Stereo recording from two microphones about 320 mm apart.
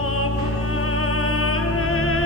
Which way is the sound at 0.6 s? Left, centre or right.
Left.